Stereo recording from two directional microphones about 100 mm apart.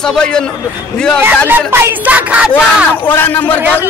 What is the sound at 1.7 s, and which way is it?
Speech, 20° right (ahead or behind).